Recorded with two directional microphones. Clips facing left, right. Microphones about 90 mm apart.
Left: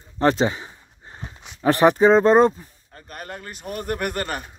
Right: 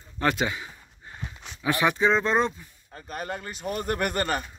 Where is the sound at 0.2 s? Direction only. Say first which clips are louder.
Left 6 dB; 35° left (ahead or behind).